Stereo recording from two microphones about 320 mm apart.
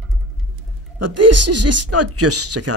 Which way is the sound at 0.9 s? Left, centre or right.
Right.